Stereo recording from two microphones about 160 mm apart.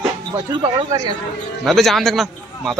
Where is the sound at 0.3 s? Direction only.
25° right (ahead or behind).